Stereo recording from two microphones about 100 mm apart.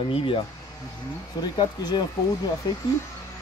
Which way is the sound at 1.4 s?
45° left (ahead or behind).